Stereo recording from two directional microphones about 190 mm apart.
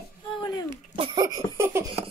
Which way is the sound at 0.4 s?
20° left (ahead or behind).